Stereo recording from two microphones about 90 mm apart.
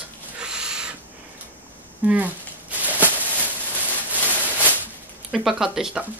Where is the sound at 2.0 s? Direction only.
15° right (ahead or behind).